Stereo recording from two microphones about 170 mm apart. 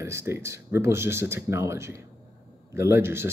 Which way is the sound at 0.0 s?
15° right (ahead or behind).